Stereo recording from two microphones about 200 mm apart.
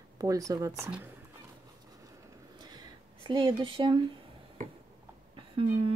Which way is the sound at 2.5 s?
20° right (ahead or behind).